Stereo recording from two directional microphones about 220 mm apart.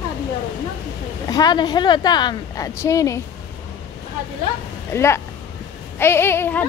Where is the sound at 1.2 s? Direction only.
15° left (ahead or behind).